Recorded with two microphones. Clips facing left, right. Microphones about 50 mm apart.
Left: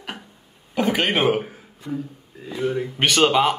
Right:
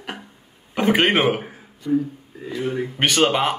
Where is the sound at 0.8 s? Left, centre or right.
Right.